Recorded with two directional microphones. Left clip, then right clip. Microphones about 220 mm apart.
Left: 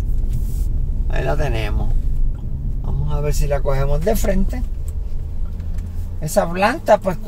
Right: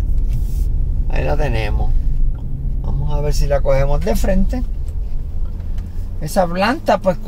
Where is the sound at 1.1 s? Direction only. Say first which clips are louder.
Right 1 dB; 20° right (ahead or behind).